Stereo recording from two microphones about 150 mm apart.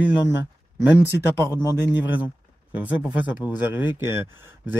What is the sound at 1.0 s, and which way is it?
Speech, 20° left (ahead or behind).